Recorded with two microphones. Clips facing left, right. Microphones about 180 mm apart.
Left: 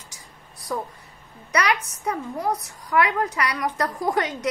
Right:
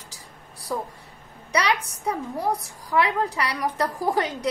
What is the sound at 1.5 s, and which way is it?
A woman's voice, 30° right (ahead or behind).